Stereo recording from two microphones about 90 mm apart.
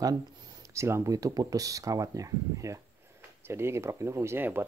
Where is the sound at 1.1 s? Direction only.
45° right (ahead or behind).